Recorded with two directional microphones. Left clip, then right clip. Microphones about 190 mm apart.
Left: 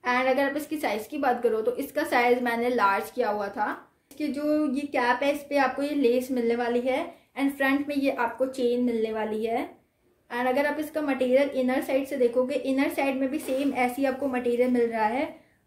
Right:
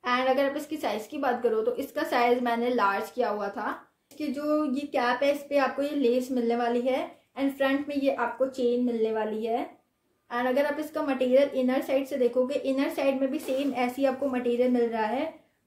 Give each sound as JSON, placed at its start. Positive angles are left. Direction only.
{"t": 0.0, "sound": "a woman's voice", "side_deg": 5}